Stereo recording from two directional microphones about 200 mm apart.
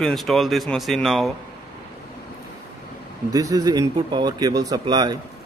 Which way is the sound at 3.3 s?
20° right (ahead or behind).